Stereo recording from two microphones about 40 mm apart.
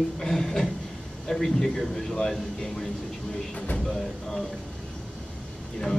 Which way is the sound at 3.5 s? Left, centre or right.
Left.